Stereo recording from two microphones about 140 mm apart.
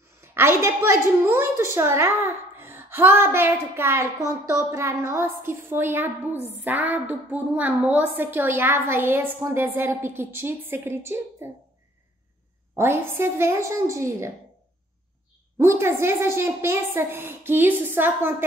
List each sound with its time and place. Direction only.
0.2 s a woman's voice: 15° right (ahead or behind)
12.7 s a woman's voice: 15° right (ahead or behind)
15.5 s a woman's voice: 20° right (ahead or behind)